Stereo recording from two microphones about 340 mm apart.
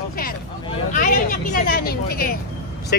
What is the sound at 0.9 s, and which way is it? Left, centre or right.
Vehicle, left.